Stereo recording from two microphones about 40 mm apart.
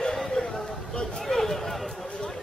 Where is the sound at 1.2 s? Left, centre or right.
Centre.